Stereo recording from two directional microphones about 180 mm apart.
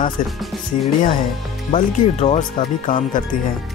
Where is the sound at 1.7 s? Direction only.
40° left (ahead or behind).